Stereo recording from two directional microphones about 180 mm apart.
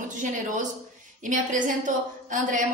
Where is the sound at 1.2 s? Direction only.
45° right (ahead or behind).